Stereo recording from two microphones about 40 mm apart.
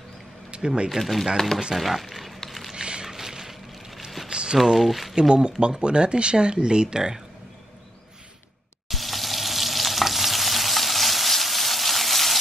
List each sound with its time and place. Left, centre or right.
0.5 s speech: right
0.8 s speech: centre
1.8 s a sound: centre
2.7 s a sound: right
3.1 s vehicle: centre
4.3 s a sound: right
4.7 s speech: centre
5.3 s speech: right
8.8 s stir: centre